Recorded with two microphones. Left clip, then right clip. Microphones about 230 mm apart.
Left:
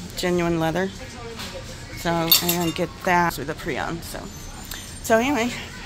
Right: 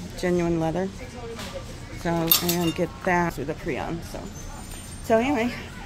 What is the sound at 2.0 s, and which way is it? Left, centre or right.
Speech, centre.